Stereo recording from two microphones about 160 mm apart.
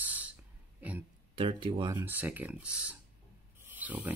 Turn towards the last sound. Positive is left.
turn(degrees=-10)  # may be behind; listen again after turning